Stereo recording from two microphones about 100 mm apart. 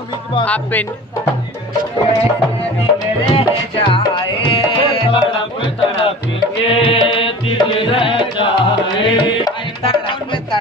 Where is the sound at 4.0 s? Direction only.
55° left (ahead or behind).